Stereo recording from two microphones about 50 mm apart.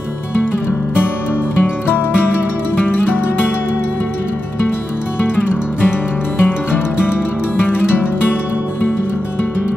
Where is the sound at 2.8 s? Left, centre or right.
Left.